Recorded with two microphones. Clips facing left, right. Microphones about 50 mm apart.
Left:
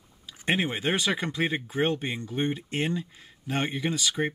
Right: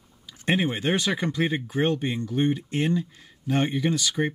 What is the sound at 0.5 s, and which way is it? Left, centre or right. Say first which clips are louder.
Speech: right 3 dB; centre.